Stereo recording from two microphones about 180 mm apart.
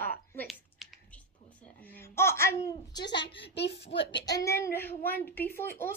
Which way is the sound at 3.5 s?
70° left (ahead or behind).